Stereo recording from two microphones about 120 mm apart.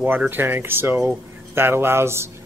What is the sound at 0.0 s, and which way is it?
Speech, 15° right (ahead or behind).